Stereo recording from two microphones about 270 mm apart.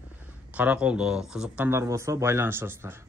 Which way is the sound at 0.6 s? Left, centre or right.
Centre.